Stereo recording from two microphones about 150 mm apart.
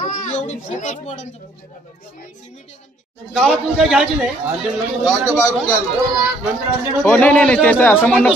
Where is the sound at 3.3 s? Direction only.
Centre (ahead or behind).